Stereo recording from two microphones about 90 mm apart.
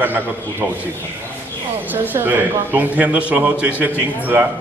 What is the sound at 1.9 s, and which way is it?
A man's voice, 20° right (ahead or behind).